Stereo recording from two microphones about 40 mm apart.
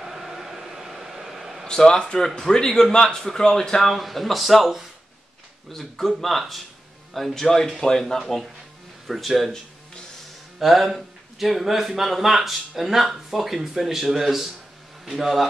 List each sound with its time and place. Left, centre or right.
0.0 s a sound: centre
1.7 s a man's voice: centre
3.9 s speech: centre
7.3 s a man's voice: centre
9.0 s speech: centre
10.6 s speech: centre